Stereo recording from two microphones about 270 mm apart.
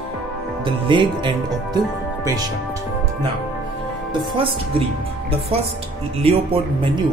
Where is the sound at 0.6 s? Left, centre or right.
Centre.